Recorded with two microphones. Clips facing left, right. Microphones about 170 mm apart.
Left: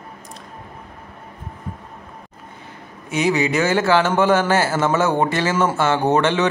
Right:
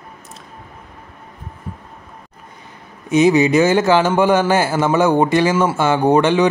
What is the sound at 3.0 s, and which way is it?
A man's voice, 20° right (ahead or behind).